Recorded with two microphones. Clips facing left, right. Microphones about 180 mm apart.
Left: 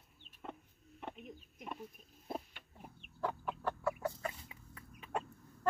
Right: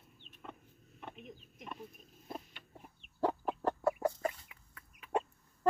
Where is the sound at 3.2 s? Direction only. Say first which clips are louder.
Right 5 dB; 35° right (ahead or behind).